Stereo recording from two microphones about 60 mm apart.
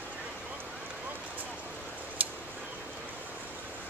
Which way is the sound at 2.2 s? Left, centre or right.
Right.